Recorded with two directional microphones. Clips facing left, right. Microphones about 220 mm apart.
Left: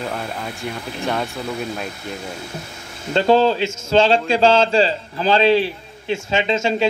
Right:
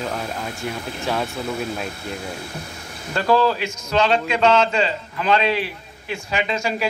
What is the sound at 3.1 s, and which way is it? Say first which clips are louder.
A man's voice: left 3 dB; 25° left (ahead or behind).